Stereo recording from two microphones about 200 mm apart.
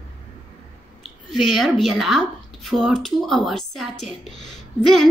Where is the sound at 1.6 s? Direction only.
Centre (ahead or behind).